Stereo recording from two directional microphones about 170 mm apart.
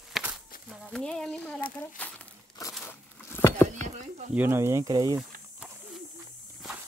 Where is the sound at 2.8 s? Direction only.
15° left (ahead or behind).